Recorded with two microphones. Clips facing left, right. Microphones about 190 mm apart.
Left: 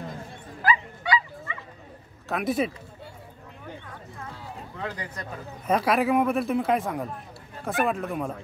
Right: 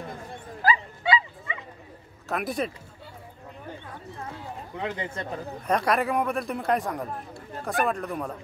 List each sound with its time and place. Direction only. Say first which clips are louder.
0.6 s bow-wow: even; 35° right (ahead or behind)
1.0 s dog: right 2 dB; 25° right (ahead or behind)
2.2 s speech: left 3 dB; centre (ahead or behind)
4.7 s speech: right 4 dB; 20° right (ahead or behind)
5.7 s speech: left 2 dB; 5° left (ahead or behind)